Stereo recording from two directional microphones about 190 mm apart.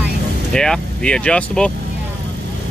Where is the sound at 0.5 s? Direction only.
5° left (ahead or behind).